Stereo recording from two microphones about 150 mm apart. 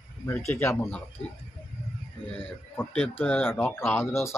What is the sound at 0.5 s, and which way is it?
Speech, 15° left (ahead or behind).